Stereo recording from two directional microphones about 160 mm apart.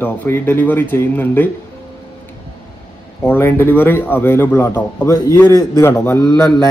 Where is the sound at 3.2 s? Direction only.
15° left (ahead or behind).